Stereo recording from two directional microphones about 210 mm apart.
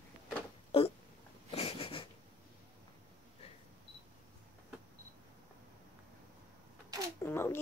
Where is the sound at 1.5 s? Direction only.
25° left (ahead or behind).